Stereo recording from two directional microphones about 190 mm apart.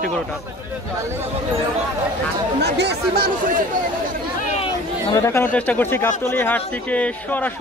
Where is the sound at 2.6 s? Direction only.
60° right (ahead or behind).